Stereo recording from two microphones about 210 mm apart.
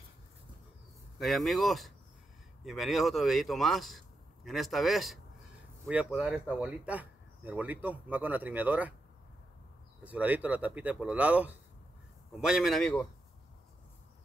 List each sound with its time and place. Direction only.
1.2 s speech: centre (ahead or behind)
10.0 s speech: 10° right (ahead or behind)